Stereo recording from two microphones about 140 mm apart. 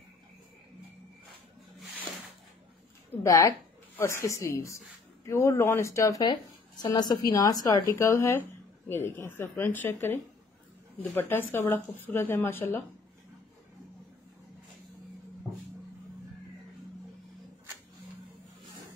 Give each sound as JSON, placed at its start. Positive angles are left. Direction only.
{"t": 3.3, "sound": "a woman's voice", "side_deg": 20}